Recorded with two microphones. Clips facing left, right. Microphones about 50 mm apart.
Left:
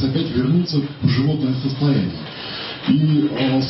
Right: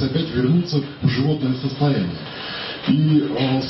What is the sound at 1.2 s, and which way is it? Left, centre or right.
A man's voice, centre.